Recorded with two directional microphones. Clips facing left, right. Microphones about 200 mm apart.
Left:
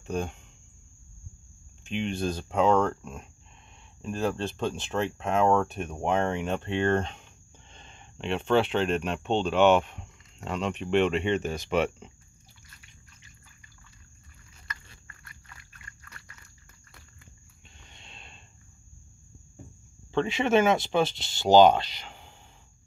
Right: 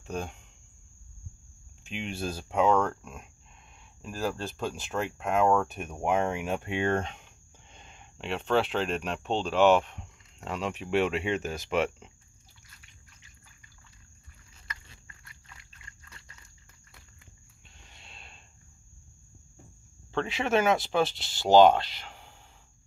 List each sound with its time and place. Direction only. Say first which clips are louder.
0.0 s speech: left 4 dB; centre (ahead or behind)
1.9 s speech: left 5 dB; 5° right (ahead or behind)
14.9 s pig: left 2 dB; 20° right (ahead or behind)
17.7 s a sound: left 1 dB; 5° right (ahead or behind)
20.1 s speech: left 4 dB; centre (ahead or behind)